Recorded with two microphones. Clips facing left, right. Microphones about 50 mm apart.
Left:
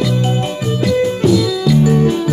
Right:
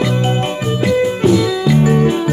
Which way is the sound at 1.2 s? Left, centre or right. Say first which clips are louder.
Even; right.